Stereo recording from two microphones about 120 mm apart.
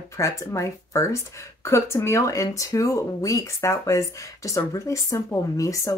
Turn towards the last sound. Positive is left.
turn(degrees=25)  # may be behind; listen again after turning